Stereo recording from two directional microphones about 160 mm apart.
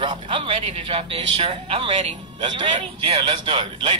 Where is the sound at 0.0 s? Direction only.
30° right (ahead or behind).